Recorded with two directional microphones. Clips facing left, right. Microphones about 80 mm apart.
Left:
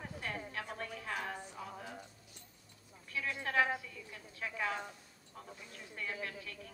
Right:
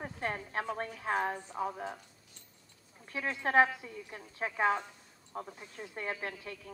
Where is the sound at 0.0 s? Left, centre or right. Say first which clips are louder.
Right 5 dB; right.